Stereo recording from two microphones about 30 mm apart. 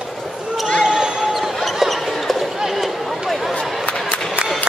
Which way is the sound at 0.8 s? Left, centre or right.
Centre.